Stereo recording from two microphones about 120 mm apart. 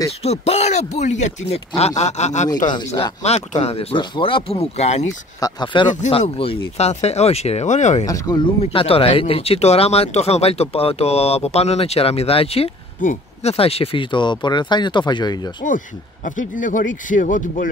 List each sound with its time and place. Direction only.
0.2 s speech: 65° left (ahead or behind); by 1.6 s 80° left
1.8 s speech: 65° left (ahead or behind); by 2.7 s 85° left
3.2 s speech: 70° left (ahead or behind)
3.6 s speech: 50° left (ahead or behind)
5.4 s speech: 40° left (ahead or behind)
6.0 s speech: 60° left (ahead or behind); by 8.0 s 80° left
8.0 s speech: 35° left (ahead or behind)
8.6 s speech: 55° left (ahead or behind)
13.0 s speech: 75° left (ahead or behind); by 15.5 s 35° left (ahead or behind)
16.3 s speech: 90° left